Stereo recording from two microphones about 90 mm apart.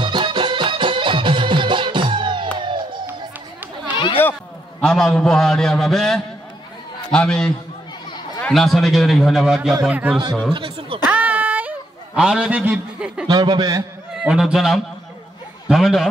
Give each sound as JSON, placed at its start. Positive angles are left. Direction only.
{"t": 0.0, "sound": "music", "side_deg": -60}
{"t": 4.7, "sound": "a man's voice", "side_deg": 5}
{"t": 10.5, "sound": "speech", "side_deg": -65}
{"t": 11.1, "sound": "a sound", "side_deg": -15}
{"t": 12.2, "sound": "a man's voice", "side_deg": -10}
{"t": 13.3, "sound": "a man's voice", "side_deg": -50}
{"t": 14.1, "sound": "a man's voice", "side_deg": -5}